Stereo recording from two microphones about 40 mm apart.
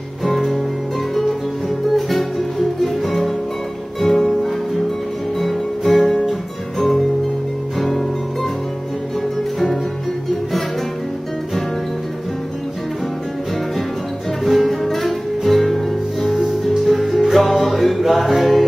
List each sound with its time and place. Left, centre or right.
0.2 s music: centre
2.0 s music: centre
14.4 s music: centre